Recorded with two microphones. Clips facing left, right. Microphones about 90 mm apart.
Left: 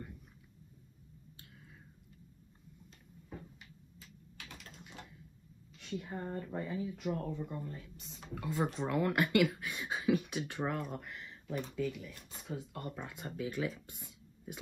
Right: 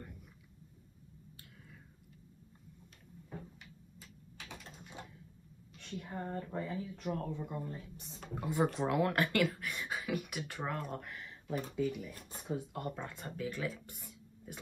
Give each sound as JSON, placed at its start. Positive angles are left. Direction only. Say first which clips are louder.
{"t": 4.4, "sound": "typing", "louder": "right 2 dB", "side_deg": -20}
{"t": 5.9, "sound": "speech", "louder": "left 1 dB", "side_deg": -5}
{"t": 7.2, "sound": "speech", "louder": "even", "side_deg": -5}
{"t": 8.4, "sound": "speech", "louder": "right 2 dB", "side_deg": -15}
{"t": 8.7, "sound": "speech", "louder": "right 1 dB", "side_deg": -5}
{"t": 9.1, "sound": "a sound", "louder": "left 2 dB", "side_deg": 10}
{"t": 10.8, "sound": "speech", "louder": "even", "side_deg": 5}
{"t": 11.7, "sound": "speech", "louder": "right 3 dB", "side_deg": -15}
{"t": 12.3, "sound": "a sound", "louder": "right 4 dB", "side_deg": -25}
{"t": 12.7, "sound": "speech", "louder": "right 3 dB", "side_deg": -5}
{"t": 13.0, "sound": "speech", "louder": "even", "side_deg": 15}